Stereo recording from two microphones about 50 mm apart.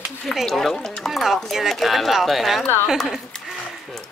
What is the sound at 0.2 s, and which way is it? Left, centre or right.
Speech, centre.